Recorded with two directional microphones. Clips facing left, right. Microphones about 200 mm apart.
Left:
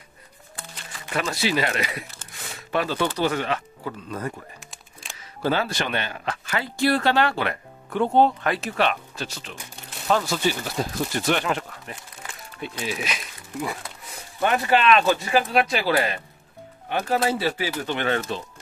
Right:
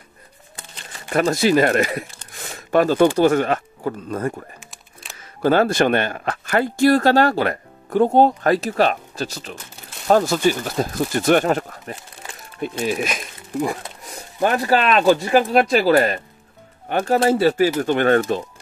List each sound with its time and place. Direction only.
1.0 s speech: 45° right (ahead or behind)
5.1 s camera: centre (ahead or behind)
5.4 s speech: 50° right (ahead or behind)